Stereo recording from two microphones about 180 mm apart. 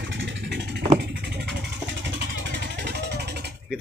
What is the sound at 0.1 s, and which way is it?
Vehicle, 80° right.